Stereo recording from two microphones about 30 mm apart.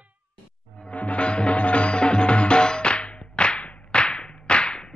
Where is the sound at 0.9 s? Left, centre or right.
Left.